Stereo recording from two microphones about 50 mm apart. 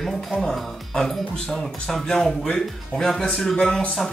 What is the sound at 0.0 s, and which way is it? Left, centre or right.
Speech, centre.